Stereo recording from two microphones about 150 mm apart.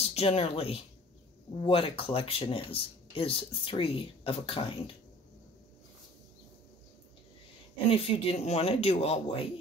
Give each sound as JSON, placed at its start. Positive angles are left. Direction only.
{"t": 0.0, "sound": "speech", "side_deg": 45}
{"t": 7.9, "sound": "speech", "side_deg": 40}